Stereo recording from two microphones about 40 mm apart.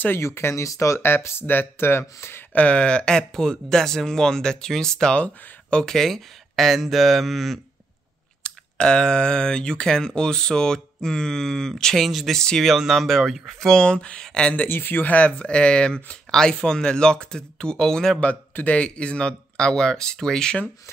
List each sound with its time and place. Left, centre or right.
0.1 s speech: left
1.0 s speech: left
2.5 s speech: left; by 5.1 s centre
5.1 s speech: left
5.9 s speech: centre
8.5 s speech: left; by 12.3 s centre
12.3 s speech: centre
12.6 s speech: centre
13.7 s speech: centre
14.7 s speech: left
15.0 s speech: left; by 18.1 s centre
18.7 s speech: left